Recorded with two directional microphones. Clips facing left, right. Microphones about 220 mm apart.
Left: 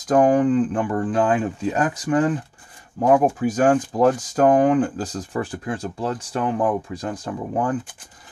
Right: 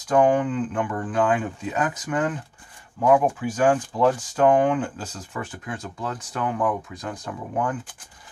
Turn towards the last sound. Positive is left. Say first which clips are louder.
# left 3 dB
turn(degrees=30)  # may be behind; listen again after turning